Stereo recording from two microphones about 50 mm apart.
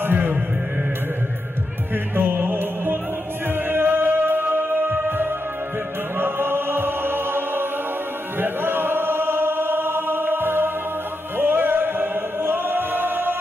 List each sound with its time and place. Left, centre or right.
0.0 s music: right
2.1 s music: right
8.4 s choir: right